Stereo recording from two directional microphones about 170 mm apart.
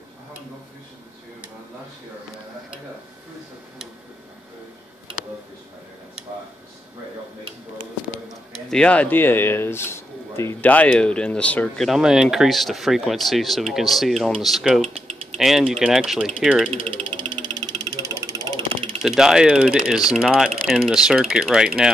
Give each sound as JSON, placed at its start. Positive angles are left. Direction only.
{"t": 8.6, "sound": "speech", "side_deg": 5}
{"t": 16.9, "sound": "music", "side_deg": -30}
{"t": 17.6, "sound": "a sound", "side_deg": -25}
{"t": 19.0, "sound": "speech", "side_deg": -5}